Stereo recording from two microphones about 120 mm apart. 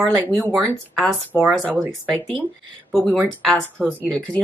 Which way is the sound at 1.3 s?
10° left (ahead or behind).